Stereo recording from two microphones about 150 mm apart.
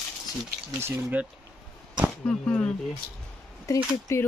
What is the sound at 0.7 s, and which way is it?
Speech, 15° right (ahead or behind).